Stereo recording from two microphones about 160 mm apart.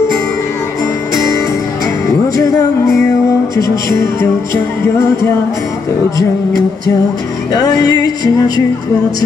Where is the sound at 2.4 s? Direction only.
20° left (ahead or behind).